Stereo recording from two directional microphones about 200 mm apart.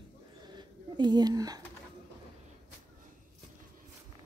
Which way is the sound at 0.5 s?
20° right (ahead or behind).